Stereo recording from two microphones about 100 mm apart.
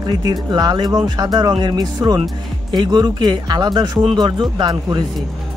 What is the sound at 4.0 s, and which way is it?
Speech, 55° right (ahead or behind).